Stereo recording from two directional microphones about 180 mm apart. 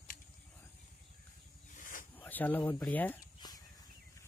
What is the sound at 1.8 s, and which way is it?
Snake, 50° left (ahead or behind).